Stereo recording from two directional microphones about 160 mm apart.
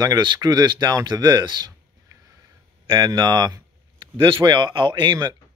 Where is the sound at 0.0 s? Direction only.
25° right (ahead or behind).